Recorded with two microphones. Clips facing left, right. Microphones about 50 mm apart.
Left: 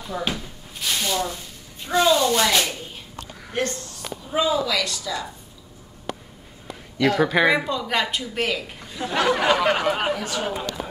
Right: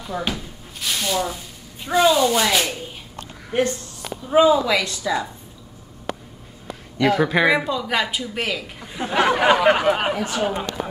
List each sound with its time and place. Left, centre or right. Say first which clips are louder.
0.0 s speech: right 1 dB; centre
3.5 s a woman's voice: right 5 dB; centre
7.0 s speech: right 1 dB; centre
8.8 s a woman's voice: right 3 dB; right
10.5 s speech: right 2 dB; right